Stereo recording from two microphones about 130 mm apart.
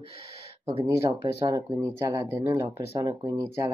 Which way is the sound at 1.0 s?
30° right (ahead or behind).